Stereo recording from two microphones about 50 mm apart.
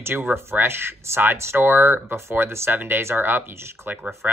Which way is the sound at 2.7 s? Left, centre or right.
Right.